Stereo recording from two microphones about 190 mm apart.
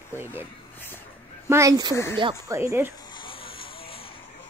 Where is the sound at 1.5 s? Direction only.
15° right (ahead or behind).